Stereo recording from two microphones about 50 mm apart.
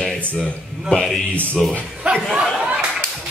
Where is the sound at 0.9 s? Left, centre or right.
Centre.